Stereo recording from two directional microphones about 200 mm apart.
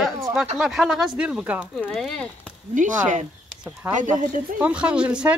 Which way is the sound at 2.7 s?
40° right (ahead or behind).